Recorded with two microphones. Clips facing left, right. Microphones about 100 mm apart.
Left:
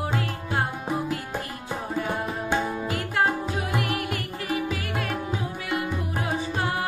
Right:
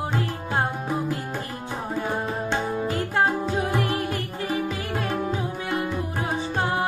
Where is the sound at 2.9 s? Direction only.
30° right (ahead or behind).